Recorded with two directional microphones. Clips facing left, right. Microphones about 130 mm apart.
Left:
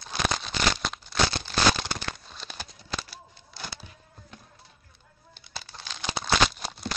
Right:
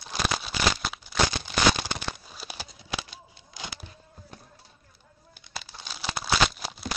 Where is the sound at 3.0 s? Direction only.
15° right (ahead or behind).